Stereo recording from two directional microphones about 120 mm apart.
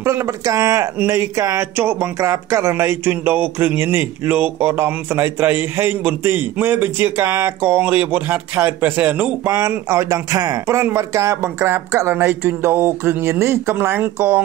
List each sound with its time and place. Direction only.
0.0 s a man's voice: 25° right (ahead or behind)